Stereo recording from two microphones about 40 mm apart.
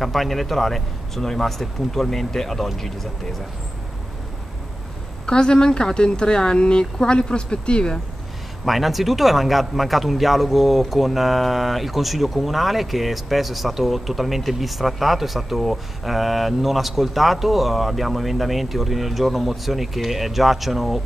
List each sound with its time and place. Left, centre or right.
0.0 s speech: centre
5.2 s speech: left
8.6 s speech: centre